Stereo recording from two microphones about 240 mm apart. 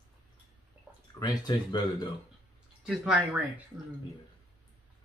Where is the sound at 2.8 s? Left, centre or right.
Centre.